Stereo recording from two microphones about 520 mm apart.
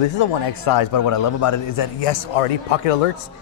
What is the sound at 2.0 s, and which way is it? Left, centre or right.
Speech, left.